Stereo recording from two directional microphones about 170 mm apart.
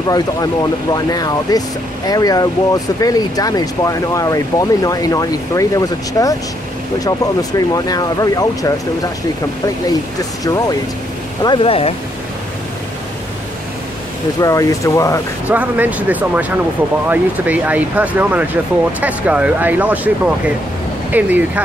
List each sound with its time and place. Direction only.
0.9 s speech: 20° left (ahead or behind)
7.7 s speech: 20° left (ahead or behind)
10.4 s speech: 20° left (ahead or behind)
14.4 s speech: 20° left (ahead or behind)
15.4 s speech: 10° right (ahead or behind)